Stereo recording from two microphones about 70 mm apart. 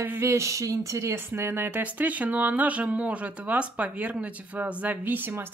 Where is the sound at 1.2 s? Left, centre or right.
Right.